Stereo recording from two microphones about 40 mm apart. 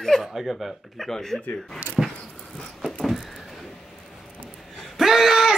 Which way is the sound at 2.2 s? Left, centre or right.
Left.